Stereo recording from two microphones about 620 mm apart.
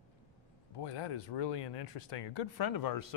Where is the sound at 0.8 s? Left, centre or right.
Left.